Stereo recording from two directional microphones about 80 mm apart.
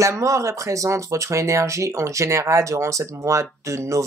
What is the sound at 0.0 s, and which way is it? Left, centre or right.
Speech, right.